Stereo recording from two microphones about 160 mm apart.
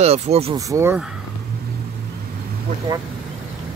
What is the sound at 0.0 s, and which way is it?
Speech, 40° right (ahead or behind).